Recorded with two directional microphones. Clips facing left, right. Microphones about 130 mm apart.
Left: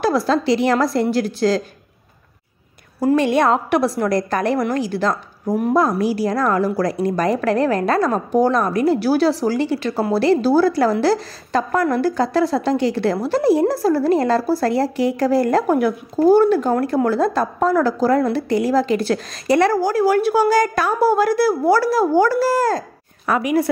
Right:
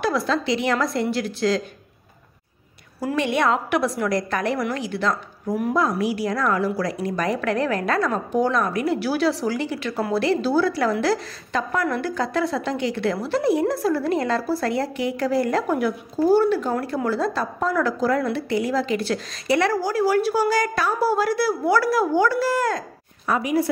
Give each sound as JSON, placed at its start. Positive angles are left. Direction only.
{"t": 0.0, "sound": "a woman's voice", "side_deg": 40}
{"t": 3.0, "sound": "a woman's voice", "side_deg": 40}
{"t": 21.7, "sound": "a woman's voice", "side_deg": 30}
{"t": 22.1, "sound": "a woman's voice", "side_deg": 40}
{"t": 23.2, "sound": "a woman's voice", "side_deg": 75}